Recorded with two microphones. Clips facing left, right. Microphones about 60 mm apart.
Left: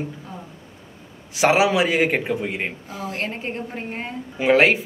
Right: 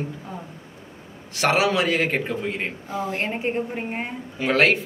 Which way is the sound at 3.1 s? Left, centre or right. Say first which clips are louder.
Right 2 dB; centre.